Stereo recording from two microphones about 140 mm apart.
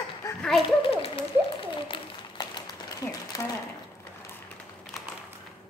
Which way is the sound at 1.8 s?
35° left (ahead or behind).